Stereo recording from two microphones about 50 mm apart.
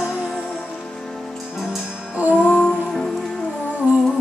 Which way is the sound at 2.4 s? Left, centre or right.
Left.